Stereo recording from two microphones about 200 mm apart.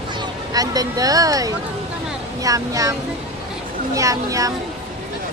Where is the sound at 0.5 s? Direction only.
20° right (ahead or behind).